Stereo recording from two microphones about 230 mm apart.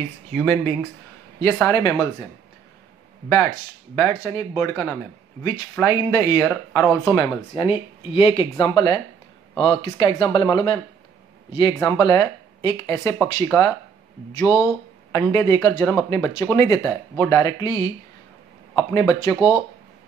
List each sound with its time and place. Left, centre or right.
0.3 s speech: centre
3.3 s speech: centre